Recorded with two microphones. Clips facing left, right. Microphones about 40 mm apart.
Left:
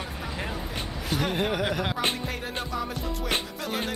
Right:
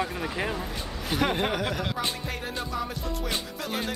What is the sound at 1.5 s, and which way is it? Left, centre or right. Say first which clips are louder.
Speech: left 2 dB; centre.